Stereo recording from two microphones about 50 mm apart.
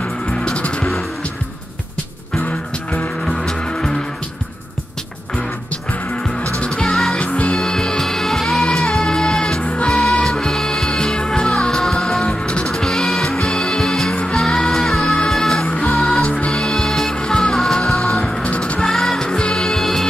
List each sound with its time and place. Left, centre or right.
0.4 s music: left
2.4 s music: left
3.3 s music: centre
6.6 s music: centre
7.2 s music: left
16.3 s music: left; by 18.2 s centre
18.2 s music: left
18.8 s music: centre
19.2 s music: centre